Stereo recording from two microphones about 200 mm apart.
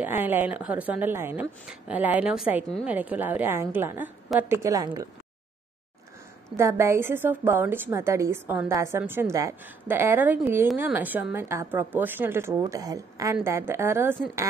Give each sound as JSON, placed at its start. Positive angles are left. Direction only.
{"t": 0.0, "sound": "a woman's voice", "side_deg": -10}
{"t": 6.5, "sound": "a woman's voice", "side_deg": -15}